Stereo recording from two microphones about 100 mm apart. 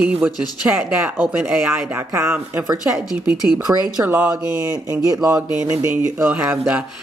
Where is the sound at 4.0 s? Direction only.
25° right (ahead or behind).